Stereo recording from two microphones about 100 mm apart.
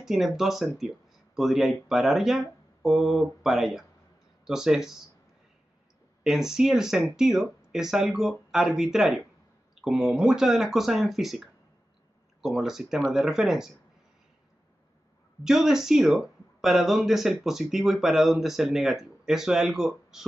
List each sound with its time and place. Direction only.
0.0 s speech: 5° right (ahead or behind)
6.2 s speech: 5° right (ahead or behind)
15.4 s speech: 5° right (ahead or behind)